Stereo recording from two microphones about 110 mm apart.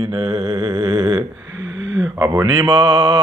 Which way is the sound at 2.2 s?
30° right (ahead or behind).